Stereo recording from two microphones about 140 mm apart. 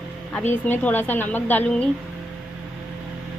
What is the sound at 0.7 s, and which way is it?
Speech, 15° left (ahead or behind).